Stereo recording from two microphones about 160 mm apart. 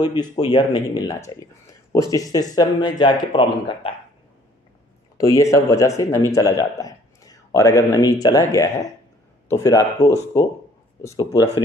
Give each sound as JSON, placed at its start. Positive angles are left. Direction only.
{"t": 0.1, "sound": "a man's voice", "side_deg": 25}
{"t": 5.1, "sound": "a man's voice", "side_deg": 20}